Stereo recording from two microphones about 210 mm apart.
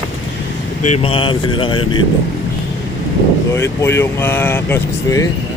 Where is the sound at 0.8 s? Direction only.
25° left (ahead or behind).